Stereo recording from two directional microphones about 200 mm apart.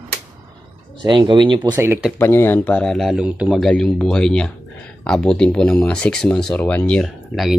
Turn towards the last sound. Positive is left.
turn(degrees=0)  # may be behind; listen again after turning